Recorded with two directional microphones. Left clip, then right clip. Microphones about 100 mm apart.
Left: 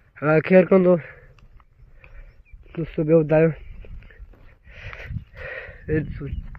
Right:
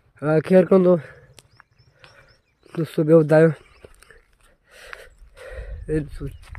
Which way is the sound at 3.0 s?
90° right.